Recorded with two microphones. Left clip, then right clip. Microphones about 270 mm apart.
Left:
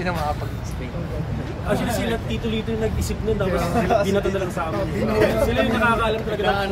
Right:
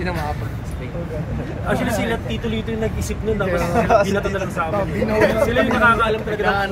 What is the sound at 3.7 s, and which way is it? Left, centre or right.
Speech, centre.